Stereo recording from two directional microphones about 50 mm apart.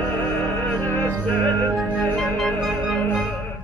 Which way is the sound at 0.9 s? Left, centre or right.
Left.